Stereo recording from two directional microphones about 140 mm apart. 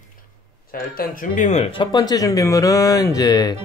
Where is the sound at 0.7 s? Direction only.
85° left; by 1.7 s 55° left (ahead or behind).